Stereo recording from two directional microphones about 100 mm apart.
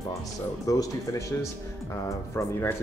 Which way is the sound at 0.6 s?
35° left (ahead or behind).